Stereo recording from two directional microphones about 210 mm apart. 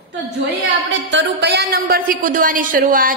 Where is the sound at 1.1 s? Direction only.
55° right (ahead or behind).